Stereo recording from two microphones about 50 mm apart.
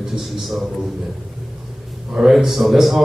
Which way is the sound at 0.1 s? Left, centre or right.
Centre.